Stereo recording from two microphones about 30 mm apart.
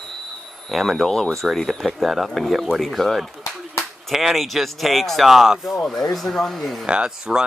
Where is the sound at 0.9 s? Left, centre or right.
Centre.